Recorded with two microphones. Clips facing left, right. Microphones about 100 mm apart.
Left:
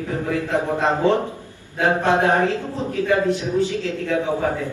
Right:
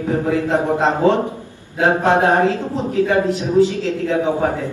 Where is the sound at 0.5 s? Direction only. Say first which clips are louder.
Right 2 dB; 20° right (ahead or behind).